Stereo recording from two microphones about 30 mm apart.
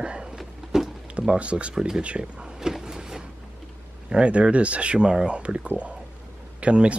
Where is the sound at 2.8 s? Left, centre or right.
Centre.